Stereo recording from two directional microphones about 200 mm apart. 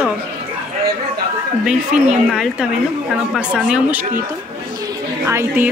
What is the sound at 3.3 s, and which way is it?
Speech, 5° right (ahead or behind).